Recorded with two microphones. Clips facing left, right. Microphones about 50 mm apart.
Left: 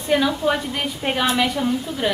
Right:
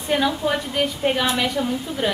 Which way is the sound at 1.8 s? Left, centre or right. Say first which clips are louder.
Even; centre.